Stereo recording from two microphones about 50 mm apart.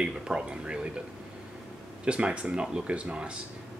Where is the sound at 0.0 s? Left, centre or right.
Centre.